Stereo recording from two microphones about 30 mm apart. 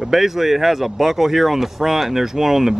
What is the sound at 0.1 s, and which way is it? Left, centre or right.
Speech, centre.